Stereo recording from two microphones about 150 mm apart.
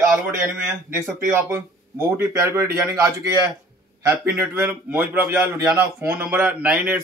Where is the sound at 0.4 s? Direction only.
15° right (ahead or behind).